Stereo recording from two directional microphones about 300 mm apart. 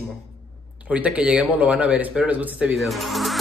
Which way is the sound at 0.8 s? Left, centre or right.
Centre.